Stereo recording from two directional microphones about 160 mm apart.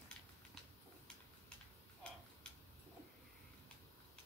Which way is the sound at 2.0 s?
5° left (ahead or behind).